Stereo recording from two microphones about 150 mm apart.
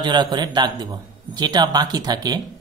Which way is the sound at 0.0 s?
30° right (ahead or behind).